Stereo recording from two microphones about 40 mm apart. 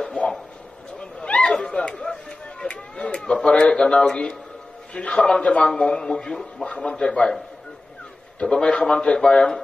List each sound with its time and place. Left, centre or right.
0.9 s a sound: left
4.9 s a man's voice: left
8.4 s a man's voice: left